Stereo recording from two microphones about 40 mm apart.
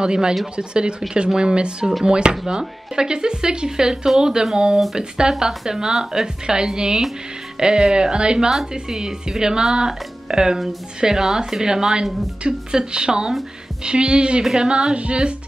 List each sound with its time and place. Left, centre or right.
0.0 s a woman's voice: centre
8.5 s a woman's voice: centre
14.4 s a woman's voice: centre; by 15.3 s right